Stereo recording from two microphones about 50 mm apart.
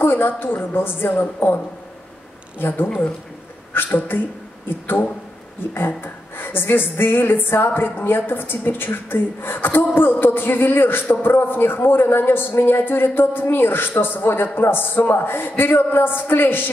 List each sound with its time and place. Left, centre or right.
0.0 s a man's voice: left
2.6 s a man's voice: left